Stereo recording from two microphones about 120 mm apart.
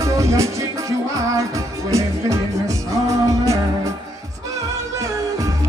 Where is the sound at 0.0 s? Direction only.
25° right (ahead or behind).